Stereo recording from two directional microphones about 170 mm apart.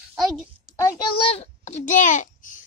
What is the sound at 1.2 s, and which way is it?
A child's voice, 35° left (ahead or behind).